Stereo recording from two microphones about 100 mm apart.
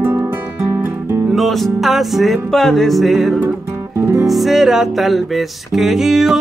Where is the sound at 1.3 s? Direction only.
Centre (ahead or behind).